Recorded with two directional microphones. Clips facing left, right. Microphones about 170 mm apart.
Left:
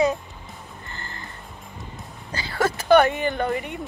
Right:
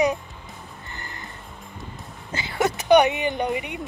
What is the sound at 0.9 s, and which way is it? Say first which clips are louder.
Music: even; 15° right (ahead or behind).